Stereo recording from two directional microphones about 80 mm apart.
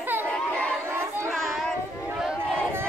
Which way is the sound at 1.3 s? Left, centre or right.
Centre.